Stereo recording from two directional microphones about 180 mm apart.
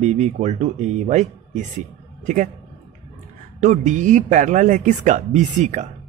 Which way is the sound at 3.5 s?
40° right (ahead or behind).